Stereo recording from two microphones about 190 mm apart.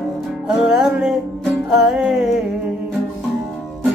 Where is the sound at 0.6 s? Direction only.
5° right (ahead or behind).